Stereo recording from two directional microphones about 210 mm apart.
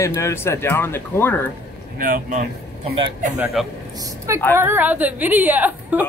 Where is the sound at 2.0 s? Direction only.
40° right (ahead or behind).